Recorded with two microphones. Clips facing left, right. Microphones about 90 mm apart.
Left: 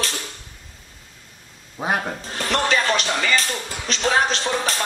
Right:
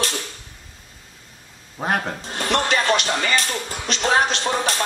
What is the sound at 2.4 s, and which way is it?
Music, 40° right (ahead or behind).